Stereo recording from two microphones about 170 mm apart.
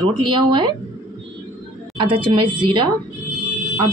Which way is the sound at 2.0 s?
30° right (ahead or behind).